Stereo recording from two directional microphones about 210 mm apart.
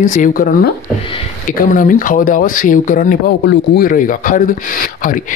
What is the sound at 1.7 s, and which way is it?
Speech, 40° left (ahead or behind).